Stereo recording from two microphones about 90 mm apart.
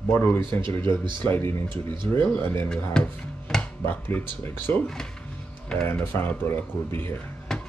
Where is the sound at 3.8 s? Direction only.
25° left (ahead or behind).